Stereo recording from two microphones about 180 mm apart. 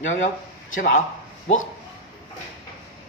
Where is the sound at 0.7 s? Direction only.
45° left (ahead or behind).